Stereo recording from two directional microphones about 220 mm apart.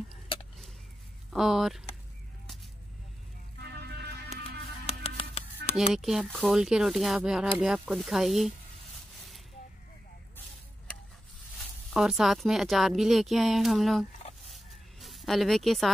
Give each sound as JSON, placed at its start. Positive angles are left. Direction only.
{"t": 1.3, "sound": "speech", "side_deg": 0}
{"t": 3.6, "sound": "music", "side_deg": -50}
{"t": 4.8, "sound": "music", "side_deg": 25}
{"t": 5.9, "sound": "speech", "side_deg": 0}
{"t": 11.9, "sound": "speech", "side_deg": 0}
{"t": 14.5, "sound": "a sound", "side_deg": 0}